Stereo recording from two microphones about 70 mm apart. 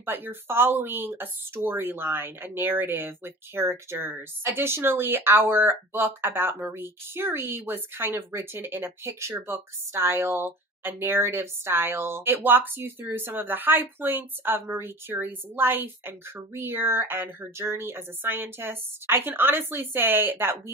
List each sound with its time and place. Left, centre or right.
0.0 s speech: right